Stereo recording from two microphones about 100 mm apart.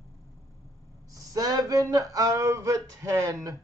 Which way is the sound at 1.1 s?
35° right (ahead or behind).